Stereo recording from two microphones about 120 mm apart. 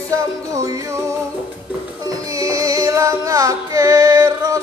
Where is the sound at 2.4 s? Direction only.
30° right (ahead or behind).